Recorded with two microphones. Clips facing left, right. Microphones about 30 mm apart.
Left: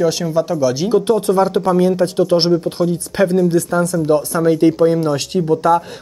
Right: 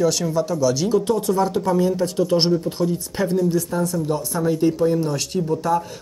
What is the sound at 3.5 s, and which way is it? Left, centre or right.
Speech, left.